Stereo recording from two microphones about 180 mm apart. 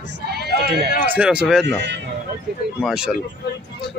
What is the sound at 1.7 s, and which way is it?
Speech, 75° right (ahead or behind).